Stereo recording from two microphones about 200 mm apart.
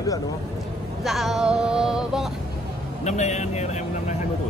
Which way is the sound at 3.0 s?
35° left (ahead or behind).